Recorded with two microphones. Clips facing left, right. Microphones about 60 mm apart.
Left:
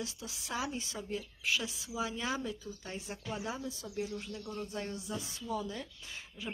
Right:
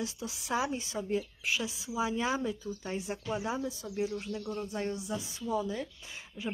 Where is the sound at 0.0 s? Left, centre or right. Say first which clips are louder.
Right 5 dB; right.